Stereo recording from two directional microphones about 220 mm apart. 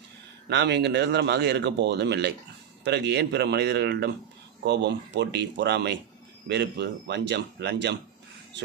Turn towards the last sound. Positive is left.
turn(degrees=-50)  # may be behind; listen again after turning